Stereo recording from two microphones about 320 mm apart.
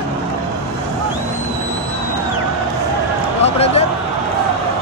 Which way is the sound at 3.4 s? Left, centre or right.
Centre.